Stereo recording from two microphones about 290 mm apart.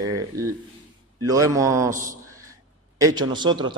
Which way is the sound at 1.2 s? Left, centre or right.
Centre.